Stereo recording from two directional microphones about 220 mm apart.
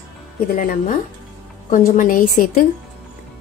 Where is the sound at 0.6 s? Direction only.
40° left (ahead or behind).